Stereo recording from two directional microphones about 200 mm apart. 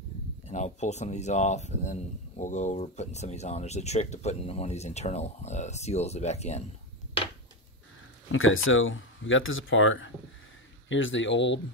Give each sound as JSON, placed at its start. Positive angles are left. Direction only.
{"t": 0.5, "sound": "speech", "side_deg": 35}
{"t": 8.3, "sound": "speech", "side_deg": 85}